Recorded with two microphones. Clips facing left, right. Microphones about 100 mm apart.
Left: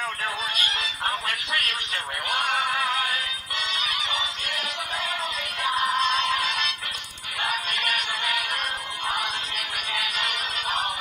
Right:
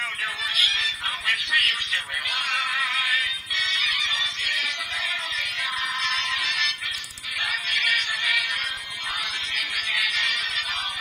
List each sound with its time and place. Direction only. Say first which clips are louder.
0.6 s music: left 2 dB; 45° left (ahead or behind)
7.4 s synthetic singing: left 2 dB; 45° left (ahead or behind)
9.6 s music: left 1 dB; 45° left (ahead or behind)